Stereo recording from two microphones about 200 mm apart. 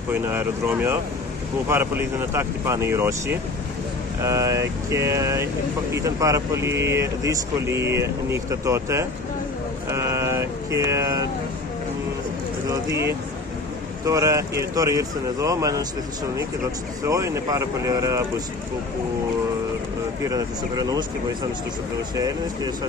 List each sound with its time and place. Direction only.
0.1 s speech: 10° right (ahead or behind)
9.8 s vehicle: 15° right (ahead or behind)
12.6 s speech: 15° right (ahead or behind)
17.0 s speech: 15° right (ahead or behind)
20.2 s speech: 20° right (ahead or behind)